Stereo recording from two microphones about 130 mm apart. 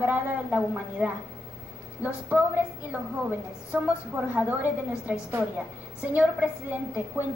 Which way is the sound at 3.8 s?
10° right (ahead or behind).